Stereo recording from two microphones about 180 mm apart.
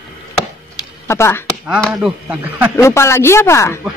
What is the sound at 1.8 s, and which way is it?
Chop, centre (ahead or behind).